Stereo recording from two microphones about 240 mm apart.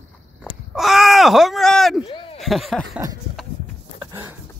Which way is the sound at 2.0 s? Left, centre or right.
Left.